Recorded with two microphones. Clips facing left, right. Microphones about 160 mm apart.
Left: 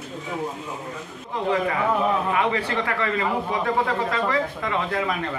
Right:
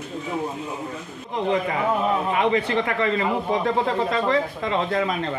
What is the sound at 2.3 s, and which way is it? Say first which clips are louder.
A man's voice: right 2 dB; 20° right (ahead or behind).